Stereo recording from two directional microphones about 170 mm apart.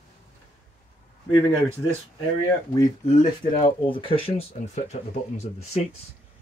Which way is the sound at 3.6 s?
30° left (ahead or behind).